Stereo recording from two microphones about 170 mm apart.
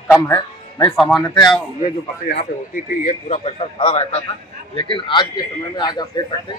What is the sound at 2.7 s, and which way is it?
A man's voice, 45° left (ahead or behind).